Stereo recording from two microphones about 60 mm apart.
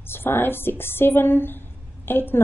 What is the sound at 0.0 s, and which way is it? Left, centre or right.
A woman's voice, left.